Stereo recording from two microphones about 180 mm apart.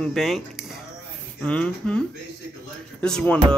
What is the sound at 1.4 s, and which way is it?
Speech, 5° left (ahead or behind).